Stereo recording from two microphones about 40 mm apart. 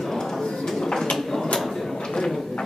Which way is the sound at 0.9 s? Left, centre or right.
Centre.